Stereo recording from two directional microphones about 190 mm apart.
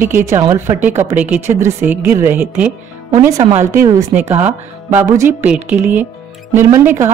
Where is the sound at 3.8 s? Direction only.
15° right (ahead or behind).